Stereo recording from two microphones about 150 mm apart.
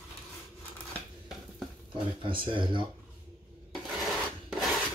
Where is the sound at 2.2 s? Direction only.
35° right (ahead or behind).